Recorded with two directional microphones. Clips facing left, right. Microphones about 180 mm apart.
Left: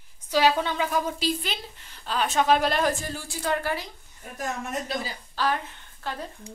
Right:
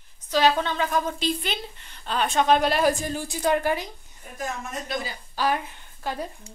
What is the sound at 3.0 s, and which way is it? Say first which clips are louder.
Speech: right 5 dB; 20° right (ahead or behind).